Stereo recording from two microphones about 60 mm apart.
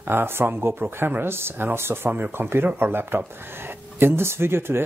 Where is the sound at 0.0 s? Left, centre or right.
Right.